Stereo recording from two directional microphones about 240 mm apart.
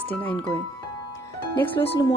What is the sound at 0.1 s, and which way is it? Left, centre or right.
Speech, centre.